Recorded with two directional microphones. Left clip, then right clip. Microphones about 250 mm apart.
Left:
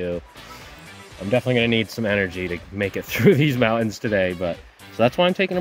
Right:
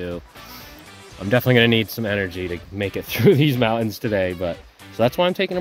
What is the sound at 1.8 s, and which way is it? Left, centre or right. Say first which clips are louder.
Speech: left 2 dB; centre.